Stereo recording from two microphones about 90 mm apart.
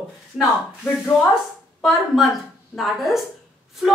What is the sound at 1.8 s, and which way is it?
Speech, centre (ahead or behind).